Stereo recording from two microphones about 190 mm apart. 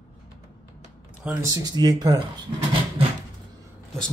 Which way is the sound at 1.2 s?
10° right (ahead or behind).